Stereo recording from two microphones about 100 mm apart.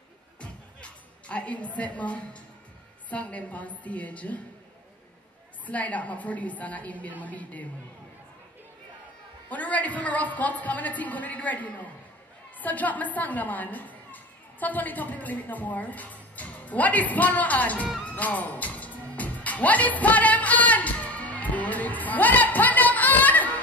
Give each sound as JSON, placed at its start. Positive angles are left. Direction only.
{"t": 0.4, "sound": "music", "side_deg": 10}
{"t": 3.1, "sound": "a woman's voice", "side_deg": 15}
{"t": 5.7, "sound": "a woman's voice", "side_deg": 15}
{"t": 9.5, "sound": "a woman's voice", "side_deg": 15}
{"t": 18.0, "sound": "music", "side_deg": 15}